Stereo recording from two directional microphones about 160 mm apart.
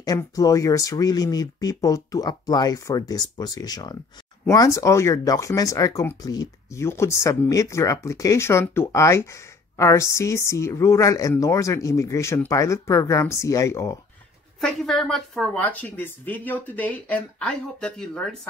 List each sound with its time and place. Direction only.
0.0 s speech: 25° left (ahead or behind)
14.6 s speech: 5° left (ahead or behind)